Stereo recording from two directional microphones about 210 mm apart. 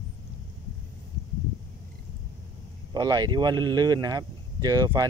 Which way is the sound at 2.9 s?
20° right (ahead or behind).